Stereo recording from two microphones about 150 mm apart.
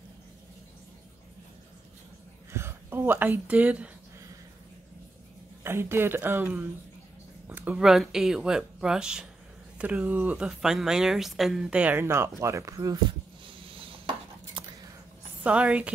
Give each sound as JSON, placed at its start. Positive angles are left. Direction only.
{"t": 2.5, "sound": "speech", "side_deg": -15}
{"t": 5.6, "sound": "speech", "side_deg": -15}
{"t": 13.5, "sound": "dishes", "side_deg": -35}
{"t": 15.4, "sound": "speech", "side_deg": -10}